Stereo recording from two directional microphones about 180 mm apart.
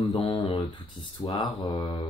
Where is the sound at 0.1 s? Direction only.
30° left (ahead or behind).